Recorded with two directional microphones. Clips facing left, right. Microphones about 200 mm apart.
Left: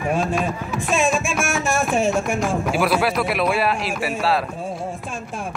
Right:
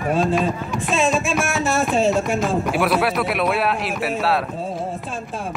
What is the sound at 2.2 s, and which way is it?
Speech, 20° right (ahead or behind).